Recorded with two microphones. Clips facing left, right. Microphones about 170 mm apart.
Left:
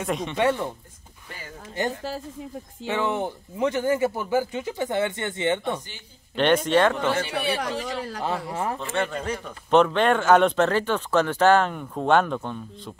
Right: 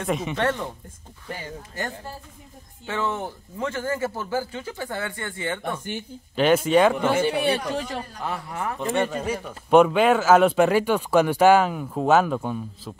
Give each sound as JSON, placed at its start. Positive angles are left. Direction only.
{"t": 0.0, "sound": "speech", "side_deg": -5}
{"t": 0.4, "sound": "speech", "side_deg": 10}
{"t": 2.9, "sound": "speech", "side_deg": 15}
{"t": 6.3, "sound": "speech", "side_deg": -5}
{"t": 8.2, "sound": "speech", "side_deg": 25}
{"t": 8.7, "sound": "speech", "side_deg": -10}